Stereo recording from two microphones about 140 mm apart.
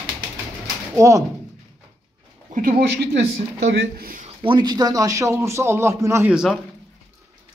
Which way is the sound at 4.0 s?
85° right.